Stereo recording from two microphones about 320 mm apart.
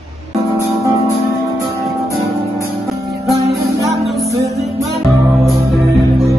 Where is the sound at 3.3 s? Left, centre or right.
Centre.